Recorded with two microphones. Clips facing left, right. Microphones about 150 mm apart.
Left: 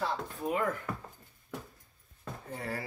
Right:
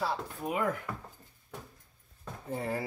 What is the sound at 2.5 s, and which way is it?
Speech, 20° right (ahead or behind).